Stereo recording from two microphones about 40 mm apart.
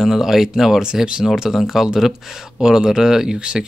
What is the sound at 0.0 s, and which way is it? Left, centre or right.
Speech, centre.